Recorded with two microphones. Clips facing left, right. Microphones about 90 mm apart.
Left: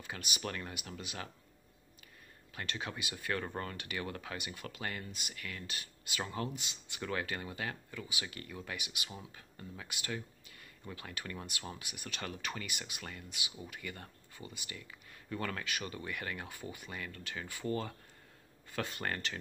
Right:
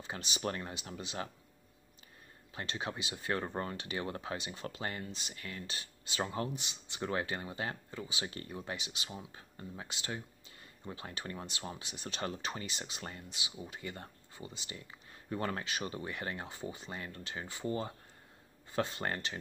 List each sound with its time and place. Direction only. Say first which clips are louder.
0.0 s speech: right 3 dB; 25° right (ahead or behind)
2.5 s speech: right 2 dB; 25° right (ahead or behind)